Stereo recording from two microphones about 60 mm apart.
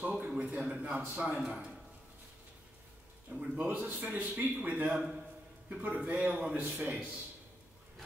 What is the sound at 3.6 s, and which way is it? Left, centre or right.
A man's voice, right.